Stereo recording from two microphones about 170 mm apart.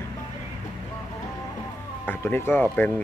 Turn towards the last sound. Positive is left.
turn(degrees=10)  # may be behind; listen again after turning